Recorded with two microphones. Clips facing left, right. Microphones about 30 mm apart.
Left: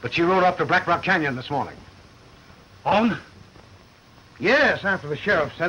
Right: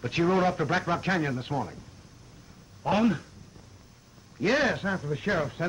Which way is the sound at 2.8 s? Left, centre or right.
Left.